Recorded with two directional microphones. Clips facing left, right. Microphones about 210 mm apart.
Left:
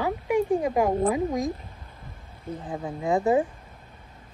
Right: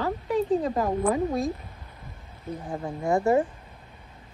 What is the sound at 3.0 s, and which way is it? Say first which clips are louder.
Speech: even; 15° left (ahead or behind).